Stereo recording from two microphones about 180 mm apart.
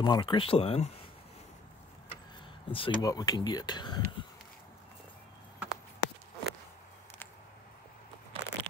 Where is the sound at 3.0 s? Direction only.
20° left (ahead or behind).